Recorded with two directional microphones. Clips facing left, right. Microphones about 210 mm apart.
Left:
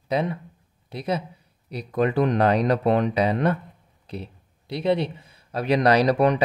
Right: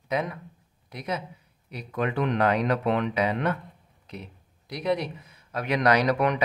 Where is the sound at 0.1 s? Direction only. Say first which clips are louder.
Left 4 dB; 30° left (ahead or behind).